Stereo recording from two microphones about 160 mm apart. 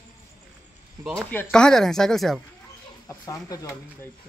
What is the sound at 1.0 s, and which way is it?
Speech, 15° right (ahead or behind).